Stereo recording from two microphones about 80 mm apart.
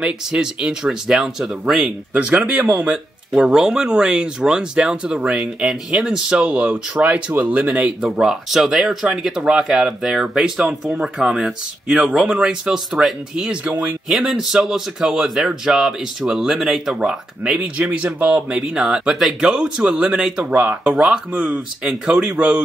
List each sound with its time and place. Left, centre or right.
0.0 s speech: centre
2.1 s speech: centre
8.2 s a man's voice: centre
14.0 s a man's voice: centre